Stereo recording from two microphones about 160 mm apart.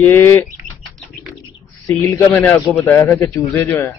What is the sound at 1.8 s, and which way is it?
A man's voice, 10° left (ahead or behind).